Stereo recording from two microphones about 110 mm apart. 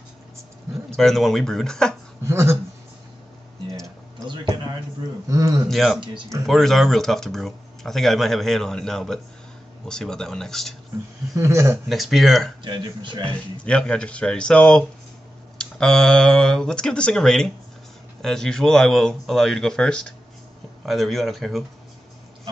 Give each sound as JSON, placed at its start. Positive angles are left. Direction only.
{"t": 0.8, "sound": "speech", "side_deg": 5}
{"t": 2.2, "sound": "a sound", "side_deg": -25}
{"t": 5.3, "sound": "a man's voice", "side_deg": -30}
{"t": 5.7, "sound": "speech", "side_deg": 0}
{"t": 11.3, "sound": "a man's voice", "side_deg": -25}
{"t": 11.9, "sound": "speech", "side_deg": 0}
{"t": 12.6, "sound": "speech", "side_deg": -45}
{"t": 13.2, "sound": "speech", "side_deg": 10}